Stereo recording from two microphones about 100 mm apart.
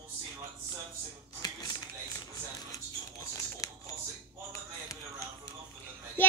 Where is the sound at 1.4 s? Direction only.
40° left (ahead or behind).